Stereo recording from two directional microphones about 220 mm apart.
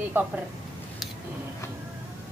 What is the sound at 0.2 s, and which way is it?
Speech, 10° right (ahead or behind).